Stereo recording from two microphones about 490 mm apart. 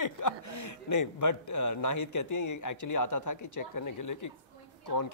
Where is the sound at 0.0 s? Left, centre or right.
Left.